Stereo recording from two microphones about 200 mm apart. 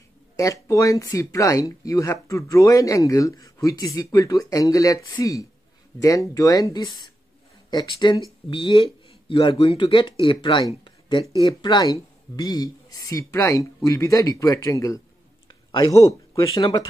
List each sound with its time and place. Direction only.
0.4 s speech: 15° left (ahead or behind)
15.4 s a sound: 20° left (ahead or behind)
16.1 s speech: 15° left (ahead or behind)